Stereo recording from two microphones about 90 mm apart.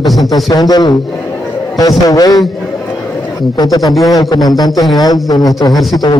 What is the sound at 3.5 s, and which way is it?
A man's voice, 45° left (ahead or behind).